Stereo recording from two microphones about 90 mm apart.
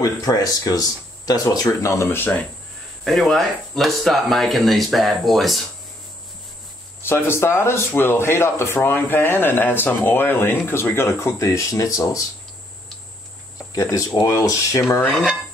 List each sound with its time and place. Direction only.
0.0 s speech: 40° left (ahead or behind); by 2.4 s 20° left (ahead or behind)
3.0 s speech: centre (ahead or behind)
7.0 s a man's voice: 30° left (ahead or behind)
13.7 s speech: 35° left (ahead or behind)